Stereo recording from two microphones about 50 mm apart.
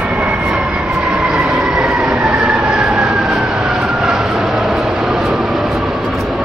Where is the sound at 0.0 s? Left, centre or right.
Right.